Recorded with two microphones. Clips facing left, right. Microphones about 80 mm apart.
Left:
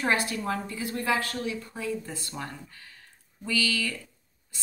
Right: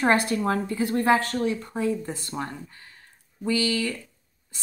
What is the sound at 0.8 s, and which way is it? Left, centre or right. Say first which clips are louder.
Speech: right 9 dB; right.